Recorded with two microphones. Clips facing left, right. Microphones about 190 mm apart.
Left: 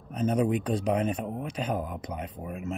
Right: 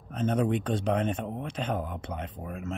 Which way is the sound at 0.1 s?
10° left (ahead or behind).